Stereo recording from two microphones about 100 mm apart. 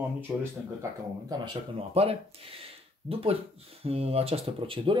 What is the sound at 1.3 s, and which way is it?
Speech, 45° right (ahead or behind).